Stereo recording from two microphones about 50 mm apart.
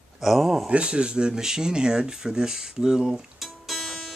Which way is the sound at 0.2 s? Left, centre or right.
Centre.